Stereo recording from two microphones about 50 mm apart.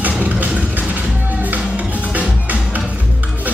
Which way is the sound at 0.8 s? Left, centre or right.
Right.